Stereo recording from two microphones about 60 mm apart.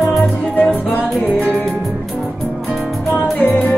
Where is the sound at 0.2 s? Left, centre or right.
Left.